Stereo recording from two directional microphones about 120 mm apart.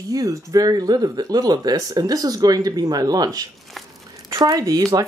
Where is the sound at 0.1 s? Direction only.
30° right (ahead or behind).